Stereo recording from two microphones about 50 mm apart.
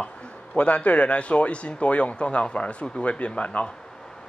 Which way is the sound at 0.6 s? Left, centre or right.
Left.